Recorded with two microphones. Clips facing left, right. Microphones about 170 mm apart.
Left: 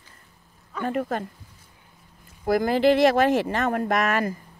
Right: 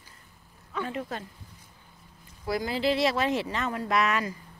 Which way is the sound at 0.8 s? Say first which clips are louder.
Left 7 dB; 50° left (ahead or behind).